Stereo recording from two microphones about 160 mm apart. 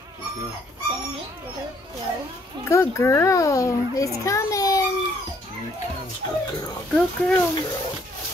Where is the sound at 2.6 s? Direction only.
15° left (ahead or behind).